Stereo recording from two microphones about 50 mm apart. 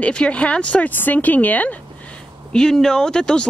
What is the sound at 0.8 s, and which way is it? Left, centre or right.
Speech, left.